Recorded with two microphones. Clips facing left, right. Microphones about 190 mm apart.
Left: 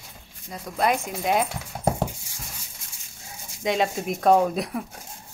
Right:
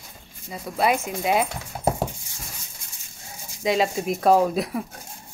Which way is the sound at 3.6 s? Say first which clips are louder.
Right 2 dB; centre (ahead or behind).